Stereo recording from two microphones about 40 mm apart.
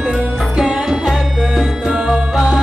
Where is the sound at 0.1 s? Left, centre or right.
Centre.